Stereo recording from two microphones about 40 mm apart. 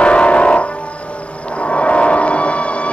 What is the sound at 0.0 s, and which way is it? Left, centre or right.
Music, left.